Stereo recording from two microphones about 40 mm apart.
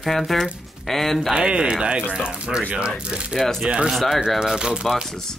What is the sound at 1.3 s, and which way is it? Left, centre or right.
Speech, right.